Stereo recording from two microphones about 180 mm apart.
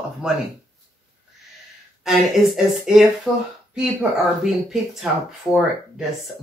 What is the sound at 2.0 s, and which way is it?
Speech, centre (ahead or behind).